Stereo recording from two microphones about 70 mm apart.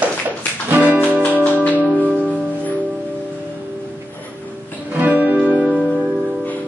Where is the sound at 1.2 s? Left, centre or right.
Left.